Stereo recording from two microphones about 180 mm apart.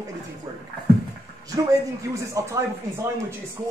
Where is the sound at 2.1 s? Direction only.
15° right (ahead or behind).